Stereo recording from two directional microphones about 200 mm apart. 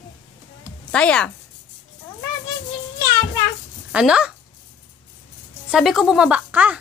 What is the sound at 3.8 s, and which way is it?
Speech, 5° right (ahead or behind).